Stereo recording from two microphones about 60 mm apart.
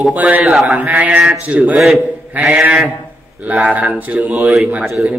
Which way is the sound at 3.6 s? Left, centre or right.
Right.